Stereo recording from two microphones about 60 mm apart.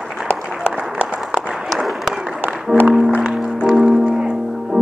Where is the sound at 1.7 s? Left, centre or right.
Centre.